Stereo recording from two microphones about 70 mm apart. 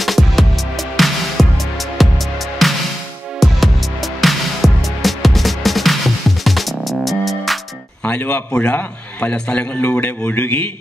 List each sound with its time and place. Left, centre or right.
0.0 s music: centre
8.0 s a man's voice: centre